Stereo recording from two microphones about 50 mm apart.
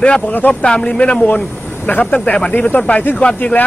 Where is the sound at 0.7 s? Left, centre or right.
Centre.